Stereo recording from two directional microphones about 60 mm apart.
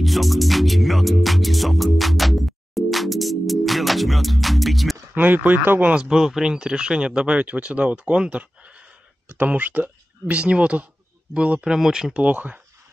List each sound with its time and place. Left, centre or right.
0.0 s music: centre
5.1 s speech: right
5.9 s speech: centre